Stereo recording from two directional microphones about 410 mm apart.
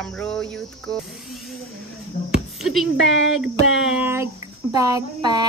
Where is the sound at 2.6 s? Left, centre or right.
Centre.